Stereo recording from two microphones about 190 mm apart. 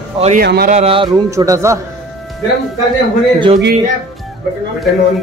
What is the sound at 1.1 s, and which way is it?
Speech, 15° right (ahead or behind).